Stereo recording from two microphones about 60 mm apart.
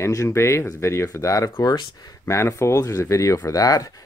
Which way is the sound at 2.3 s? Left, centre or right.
Left.